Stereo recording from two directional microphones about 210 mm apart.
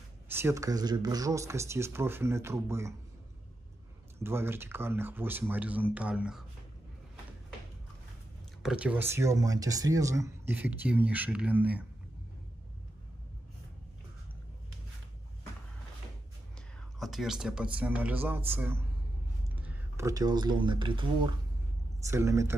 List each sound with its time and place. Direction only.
0.3 s speech: 10° right (ahead or behind)
4.2 s speech: 10° right (ahead or behind)
8.6 s speech: 5° right (ahead or behind)
17.0 s speech: centre (ahead or behind)